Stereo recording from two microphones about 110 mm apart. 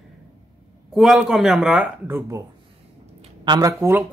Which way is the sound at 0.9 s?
Centre (ahead or behind).